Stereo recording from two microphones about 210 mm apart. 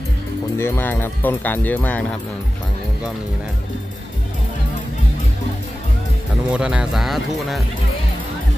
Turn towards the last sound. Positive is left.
turn(degrees=0)  # may be behind; listen again after turning